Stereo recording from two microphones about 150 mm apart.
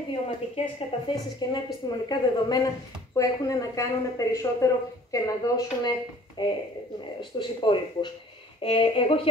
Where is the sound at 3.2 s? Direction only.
20° left (ahead or behind).